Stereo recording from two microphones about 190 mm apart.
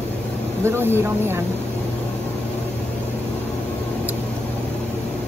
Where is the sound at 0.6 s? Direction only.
10° right (ahead or behind).